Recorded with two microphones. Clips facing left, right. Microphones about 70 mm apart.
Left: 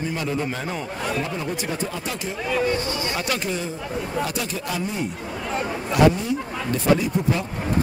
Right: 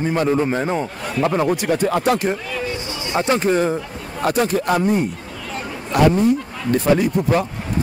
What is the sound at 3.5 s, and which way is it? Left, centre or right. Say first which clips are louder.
Speech: right 9 dB; right.